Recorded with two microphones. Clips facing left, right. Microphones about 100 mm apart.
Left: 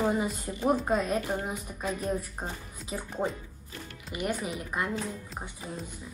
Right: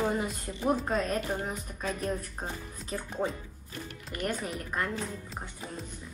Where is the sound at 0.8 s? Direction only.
10° left (ahead or behind).